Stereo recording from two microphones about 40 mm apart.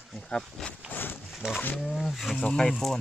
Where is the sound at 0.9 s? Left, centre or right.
Left.